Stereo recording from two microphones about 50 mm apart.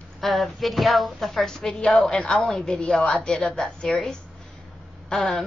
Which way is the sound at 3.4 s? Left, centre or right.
Centre.